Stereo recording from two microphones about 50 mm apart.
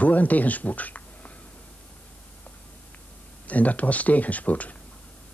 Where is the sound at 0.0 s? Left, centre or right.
Left.